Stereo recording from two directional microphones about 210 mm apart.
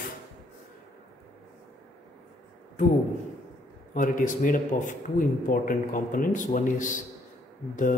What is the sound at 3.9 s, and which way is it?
Speech, 40° left (ahead or behind).